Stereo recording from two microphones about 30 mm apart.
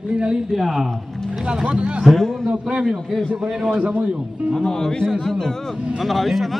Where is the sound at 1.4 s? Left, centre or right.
Right.